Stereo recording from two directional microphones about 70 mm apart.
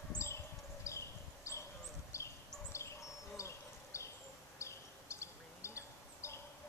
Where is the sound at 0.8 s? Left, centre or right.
Left.